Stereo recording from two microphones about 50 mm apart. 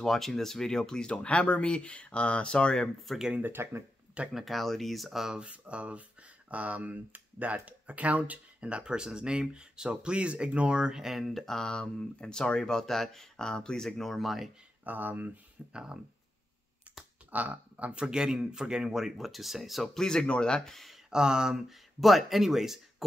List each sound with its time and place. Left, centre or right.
0.0 s speech: centre
3.1 s speech: centre
3.6 s speech: right
4.3 s speech: centre
5.3 s speech: right; by 14.5 s centre
14.9 s speech: right
15.7 s speech: centre
17.3 s speech: right
17.9 s speech: centre
21.1 s speech: centre